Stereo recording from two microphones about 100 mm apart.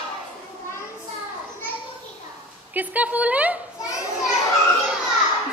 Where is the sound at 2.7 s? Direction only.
15° right (ahead or behind).